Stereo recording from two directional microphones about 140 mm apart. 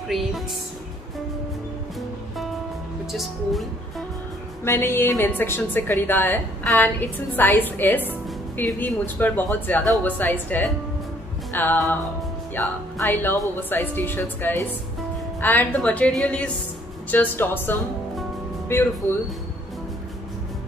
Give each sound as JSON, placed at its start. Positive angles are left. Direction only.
{"t": 2.0, "sound": "music", "side_deg": 0}
{"t": 3.1, "sound": "speech", "side_deg": 0}
{"t": 4.6, "sound": "a woman's voice", "side_deg": 15}